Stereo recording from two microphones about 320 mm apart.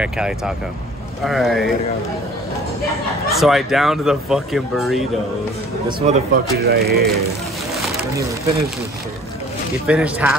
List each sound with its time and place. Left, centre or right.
1.2 s speech: centre
3.3 s speech: centre
5.9 s speech: right
9.8 s speech: centre